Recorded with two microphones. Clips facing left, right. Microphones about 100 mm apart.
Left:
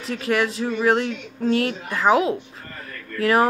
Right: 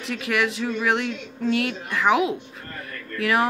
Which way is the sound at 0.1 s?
35° left (ahead or behind).